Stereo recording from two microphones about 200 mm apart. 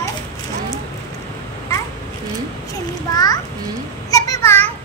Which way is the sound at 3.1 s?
20° left (ahead or behind).